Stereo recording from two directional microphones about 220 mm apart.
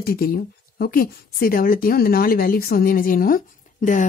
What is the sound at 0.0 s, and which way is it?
A woman's voice, 40° left (ahead or behind).